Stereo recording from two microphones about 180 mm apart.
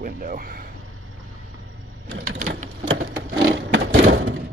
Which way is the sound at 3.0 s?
75° right (ahead or behind).